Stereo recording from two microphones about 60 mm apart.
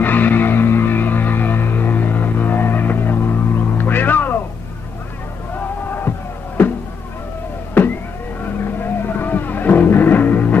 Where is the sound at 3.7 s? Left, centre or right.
Left.